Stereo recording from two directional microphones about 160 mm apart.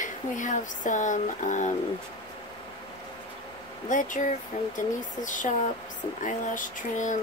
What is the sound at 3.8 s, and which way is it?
Speech, 55° left (ahead or behind).